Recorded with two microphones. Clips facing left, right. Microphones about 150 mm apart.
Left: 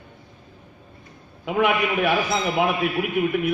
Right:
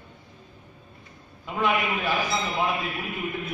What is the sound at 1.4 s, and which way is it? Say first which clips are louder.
A man's voice: left 5 dB; 70° left (ahead or behind).